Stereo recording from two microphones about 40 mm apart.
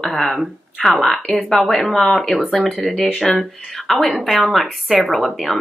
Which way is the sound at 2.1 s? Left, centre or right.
Centre.